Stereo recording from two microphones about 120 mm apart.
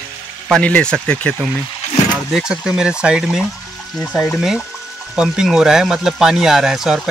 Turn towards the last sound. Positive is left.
turn(degrees=-5)  # may be behind; listen again after turning